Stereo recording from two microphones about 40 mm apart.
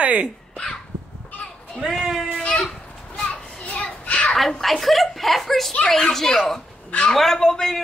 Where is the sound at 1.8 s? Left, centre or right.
Centre.